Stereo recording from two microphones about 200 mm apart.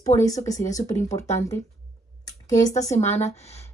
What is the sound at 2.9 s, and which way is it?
Speech, 35° left (ahead or behind).